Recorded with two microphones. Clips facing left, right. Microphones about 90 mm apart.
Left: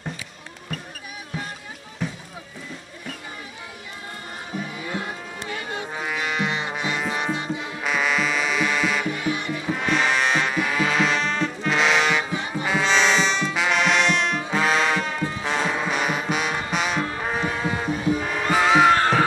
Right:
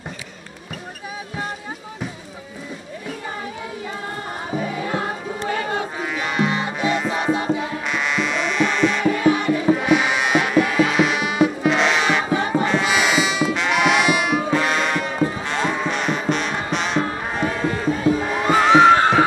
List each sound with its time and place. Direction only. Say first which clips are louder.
5.5 s music: right 7 dB; 60° right (ahead or behind)
5.9 s music: even; centre (ahead or behind)
9.0 s music: right 9 dB; 60° right (ahead or behind)
9.8 s music: right 3 dB; 5° right (ahead or behind)
11.7 s music: right 2 dB; centre (ahead or behind)
12.3 s music: right 8 dB; 65° right (ahead or behind)
12.8 s music: right 1 dB; 5° right (ahead or behind)
18.3 s music: right 4 dB; 5° right (ahead or behind)
18.9 s a sound: right 4 dB; 20° right (ahead or behind)